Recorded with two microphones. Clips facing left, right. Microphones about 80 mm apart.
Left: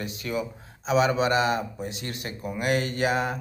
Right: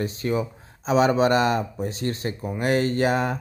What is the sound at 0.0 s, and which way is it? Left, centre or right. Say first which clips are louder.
Speech: right 5 dB; right.